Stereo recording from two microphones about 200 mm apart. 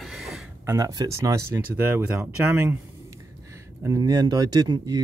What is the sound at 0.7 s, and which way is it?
Speech, 15° right (ahead or behind).